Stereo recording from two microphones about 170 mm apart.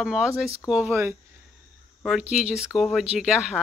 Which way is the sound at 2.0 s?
5° right (ahead or behind).